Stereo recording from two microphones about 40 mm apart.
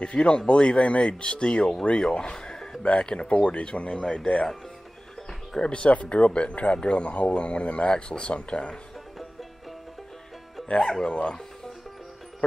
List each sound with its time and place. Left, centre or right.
0.0 s speech: left
2.3 s a sound: centre
2.8 s speech: left
4.0 s speech: centre
5.6 s speech: left
10.8 s speech: centre
11.1 s speech: left